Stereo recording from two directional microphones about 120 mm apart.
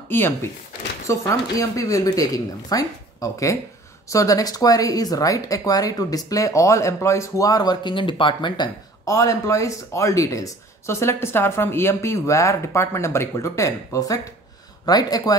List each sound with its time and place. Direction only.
0.1 s speech: 20° left (ahead or behind); by 8.6 s 40° left (ahead or behind)
9.0 s speech: 25° left (ahead or behind)